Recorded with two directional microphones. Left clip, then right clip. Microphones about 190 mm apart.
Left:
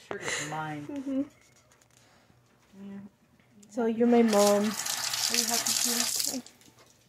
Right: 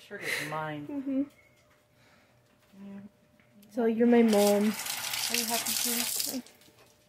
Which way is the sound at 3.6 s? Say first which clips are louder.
Even; 10° right (ahead or behind).